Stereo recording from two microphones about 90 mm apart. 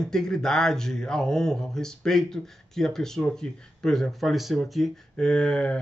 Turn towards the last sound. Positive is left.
turn(degrees=10)  # may be behind; listen again after turning